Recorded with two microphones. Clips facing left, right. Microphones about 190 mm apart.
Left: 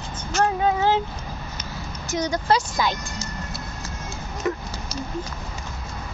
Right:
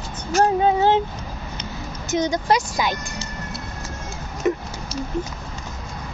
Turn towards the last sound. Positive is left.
turn(degrees=-25)  # may be behind; listen again after turning